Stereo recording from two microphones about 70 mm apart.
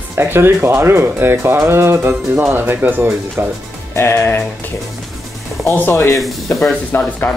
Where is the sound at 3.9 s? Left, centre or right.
Left.